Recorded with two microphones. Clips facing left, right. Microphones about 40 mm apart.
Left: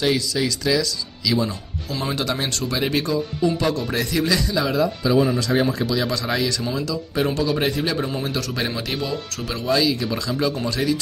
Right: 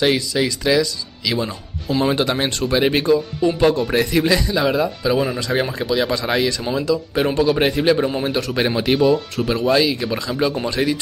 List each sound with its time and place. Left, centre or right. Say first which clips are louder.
0.0 s speech: right 3 dB; right
8.9 s speech: right 10 dB; centre
9.7 s speech: right 1 dB; right